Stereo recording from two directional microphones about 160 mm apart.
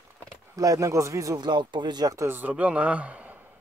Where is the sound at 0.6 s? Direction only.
20° right (ahead or behind).